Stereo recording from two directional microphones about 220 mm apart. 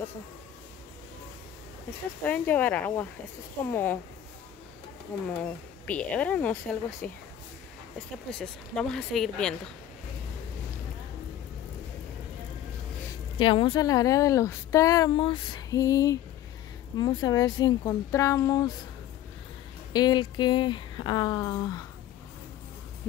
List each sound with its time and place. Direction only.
2.2 s speech: 5° left (ahead or behind)
5.3 s speech: 5° left (ahead or behind)
8.3 s speech: 5° left (ahead or behind)
13.4 s speech: 25° left (ahead or behind)
19.9 s speech: 20° left (ahead or behind)